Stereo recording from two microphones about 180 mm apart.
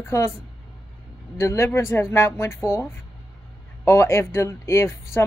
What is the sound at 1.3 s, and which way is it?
A woman's voice, 15° left (ahead or behind).